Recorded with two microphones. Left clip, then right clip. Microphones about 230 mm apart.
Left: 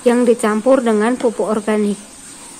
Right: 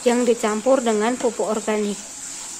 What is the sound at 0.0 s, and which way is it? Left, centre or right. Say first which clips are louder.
Speech: left 5 dB; centre.